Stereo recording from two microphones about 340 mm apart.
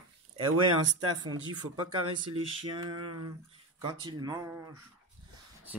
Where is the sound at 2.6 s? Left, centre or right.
Right.